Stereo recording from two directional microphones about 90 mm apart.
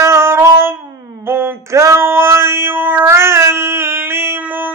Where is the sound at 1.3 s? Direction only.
30° right (ahead or behind).